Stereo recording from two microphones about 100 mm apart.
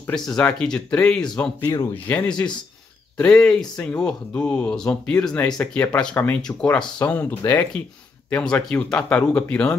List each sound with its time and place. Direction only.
0.1 s speech: 10° left (ahead or behind)
1.7 s speech: 35° left (ahead or behind)
2.0 s speech: 10° left (ahead or behind)